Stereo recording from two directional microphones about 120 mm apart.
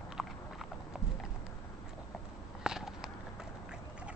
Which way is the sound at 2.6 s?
5° right (ahead or behind).